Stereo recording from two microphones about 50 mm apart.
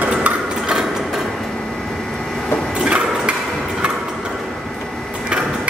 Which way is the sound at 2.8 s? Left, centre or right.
Centre.